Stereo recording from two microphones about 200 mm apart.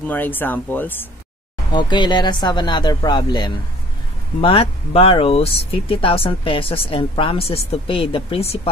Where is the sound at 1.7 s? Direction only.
25° left (ahead or behind).